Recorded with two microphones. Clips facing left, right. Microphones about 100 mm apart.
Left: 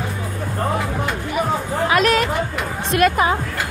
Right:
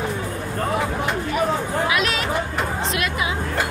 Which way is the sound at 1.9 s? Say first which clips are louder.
Left 10 dB; 45° left (ahead or behind).